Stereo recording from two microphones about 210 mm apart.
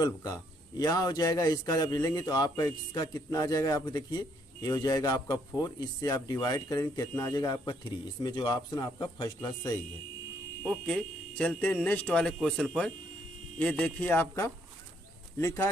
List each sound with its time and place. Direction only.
0.0 s a man's voice: 20° left (ahead or behind)
10.6 s speech: 5° left (ahead or behind)